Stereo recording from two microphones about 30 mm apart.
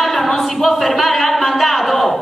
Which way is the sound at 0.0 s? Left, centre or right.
Centre.